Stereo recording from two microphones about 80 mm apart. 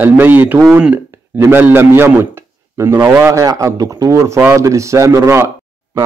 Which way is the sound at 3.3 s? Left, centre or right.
Right.